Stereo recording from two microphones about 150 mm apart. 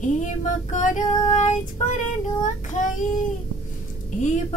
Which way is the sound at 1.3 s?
55° left (ahead or behind).